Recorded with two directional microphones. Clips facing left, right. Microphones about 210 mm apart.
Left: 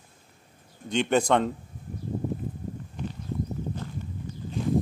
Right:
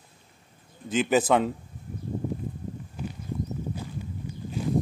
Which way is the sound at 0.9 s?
5° right (ahead or behind).